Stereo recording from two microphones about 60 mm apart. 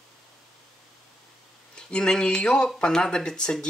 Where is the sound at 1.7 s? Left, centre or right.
Centre.